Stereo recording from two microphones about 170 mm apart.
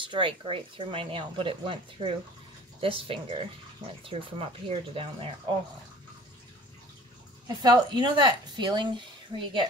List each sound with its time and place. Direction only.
0.0 s speech: 30° right (ahead or behind)
7.4 s a woman's voice: 25° right (ahead or behind)